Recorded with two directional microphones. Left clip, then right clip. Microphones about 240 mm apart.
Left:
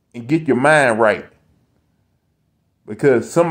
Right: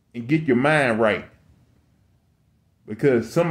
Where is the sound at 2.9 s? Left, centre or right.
Centre.